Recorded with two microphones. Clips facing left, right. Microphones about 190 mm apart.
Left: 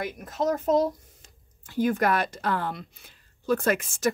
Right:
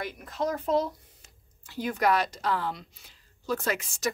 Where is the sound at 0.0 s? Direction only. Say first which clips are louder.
Left 3 dB; 45° left (ahead or behind).